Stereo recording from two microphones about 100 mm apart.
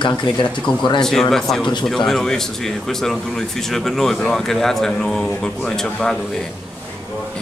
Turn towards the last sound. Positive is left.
turn(degrees=10)  # may be behind; listen again after turning